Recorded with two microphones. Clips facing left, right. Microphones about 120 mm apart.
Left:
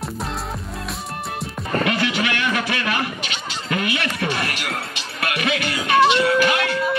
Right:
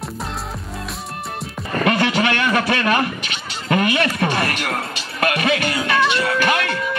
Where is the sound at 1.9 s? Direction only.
45° right (ahead or behind).